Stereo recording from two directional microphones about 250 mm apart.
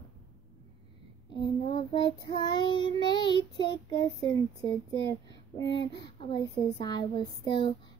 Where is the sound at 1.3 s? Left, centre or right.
Centre.